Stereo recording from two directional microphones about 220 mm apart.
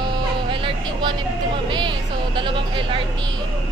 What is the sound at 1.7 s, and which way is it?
Music, 20° right (ahead or behind).